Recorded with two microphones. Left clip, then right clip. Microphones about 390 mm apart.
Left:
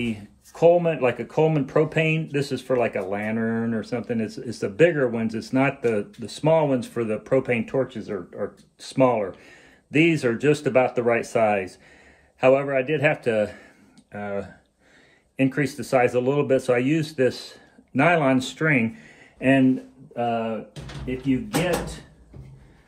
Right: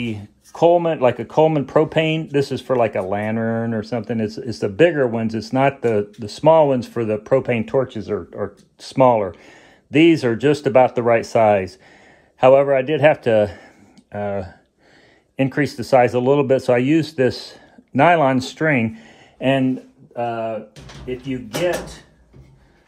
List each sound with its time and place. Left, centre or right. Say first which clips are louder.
0.0 s speech: right 2 dB; right